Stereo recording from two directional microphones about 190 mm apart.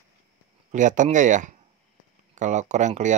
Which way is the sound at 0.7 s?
40° right (ahead or behind).